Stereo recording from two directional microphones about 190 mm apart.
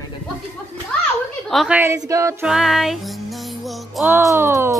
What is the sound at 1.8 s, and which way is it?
Speech, 15° right (ahead or behind).